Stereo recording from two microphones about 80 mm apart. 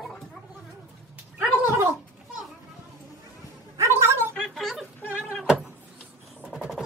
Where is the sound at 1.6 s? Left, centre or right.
Right.